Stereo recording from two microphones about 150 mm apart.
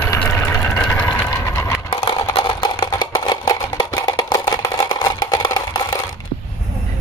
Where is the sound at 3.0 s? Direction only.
30° left (ahead or behind).